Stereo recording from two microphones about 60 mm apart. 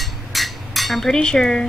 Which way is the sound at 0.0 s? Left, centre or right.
Centre.